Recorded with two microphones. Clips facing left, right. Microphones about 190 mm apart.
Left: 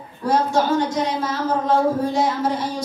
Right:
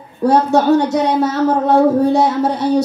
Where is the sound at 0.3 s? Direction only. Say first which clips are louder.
Right 6 dB; 70° right (ahead or behind).